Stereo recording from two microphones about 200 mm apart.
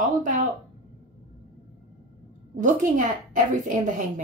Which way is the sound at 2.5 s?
40° right (ahead or behind).